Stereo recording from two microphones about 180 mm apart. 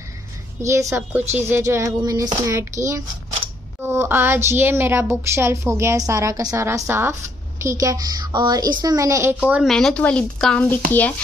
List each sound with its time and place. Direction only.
0.6 s a woman's voice: 15° right (ahead or behind)
9.4 s speech: 5° right (ahead or behind)